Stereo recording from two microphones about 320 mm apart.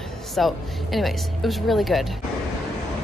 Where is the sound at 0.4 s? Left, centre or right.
Centre.